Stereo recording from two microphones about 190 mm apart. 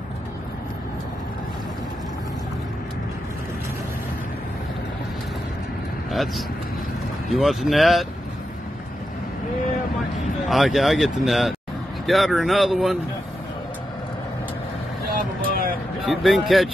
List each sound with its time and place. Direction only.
6.1 s speech: centre (ahead or behind)
10.5 s speech: centre (ahead or behind)
15.1 s vehicle: 50° right (ahead or behind)
16.0 s speech: centre (ahead or behind)